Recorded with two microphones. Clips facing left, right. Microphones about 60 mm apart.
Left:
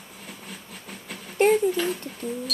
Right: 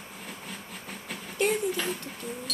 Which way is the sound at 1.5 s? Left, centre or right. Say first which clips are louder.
Left 7 dB; centre.